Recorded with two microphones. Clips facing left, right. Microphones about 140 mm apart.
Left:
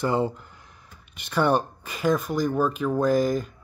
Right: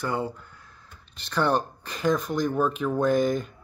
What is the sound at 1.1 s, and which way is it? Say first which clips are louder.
Speech: left 2 dB; 10° left (ahead or behind).